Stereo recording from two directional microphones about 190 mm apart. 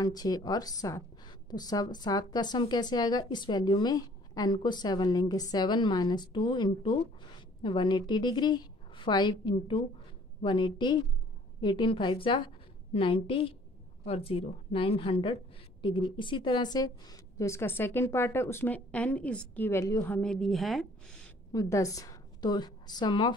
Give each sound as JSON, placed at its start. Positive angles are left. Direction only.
{"t": 0.0, "sound": "a woman's voice", "side_deg": 20}
{"t": 21.5, "sound": "a woman's voice", "side_deg": 15}